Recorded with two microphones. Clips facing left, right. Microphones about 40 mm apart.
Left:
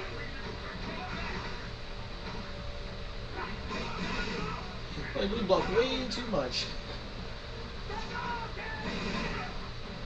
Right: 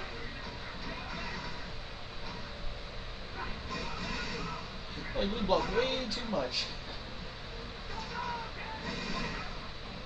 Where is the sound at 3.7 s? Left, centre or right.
Left.